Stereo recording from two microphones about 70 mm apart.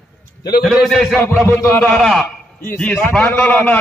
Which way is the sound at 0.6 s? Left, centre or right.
Centre.